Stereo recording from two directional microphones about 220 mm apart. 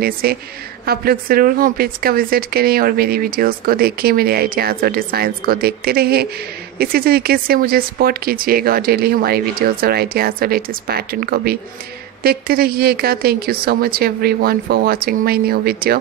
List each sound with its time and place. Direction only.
0.0 s a woman's voice: 45° right (ahead or behind)